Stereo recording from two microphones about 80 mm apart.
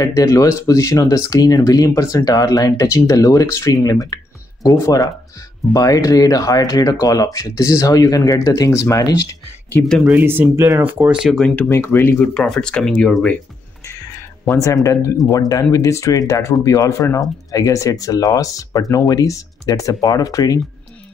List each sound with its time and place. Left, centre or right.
0.0 s speech: left
10.0 s speech: right
11.1 s speech: centre
11.3 s speech: centre
11.7 s speech: left
12.4 s speech: centre
13.8 s a sound: left
14.6 s speech: left